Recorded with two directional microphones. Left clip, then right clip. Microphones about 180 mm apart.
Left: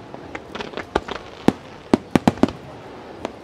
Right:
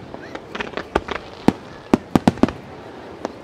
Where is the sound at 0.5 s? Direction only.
25° right (ahead or behind).